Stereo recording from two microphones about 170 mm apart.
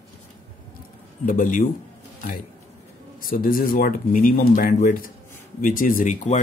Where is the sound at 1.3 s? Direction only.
50° left (ahead or behind).